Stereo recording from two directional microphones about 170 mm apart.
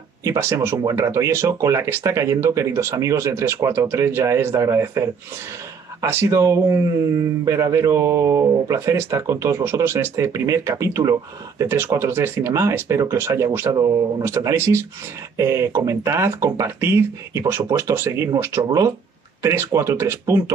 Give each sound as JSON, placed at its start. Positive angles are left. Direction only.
{"t": 0.2, "sound": "speech", "side_deg": -15}